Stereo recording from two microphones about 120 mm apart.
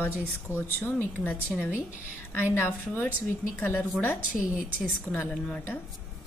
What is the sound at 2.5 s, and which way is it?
Speech, 15° left (ahead or behind).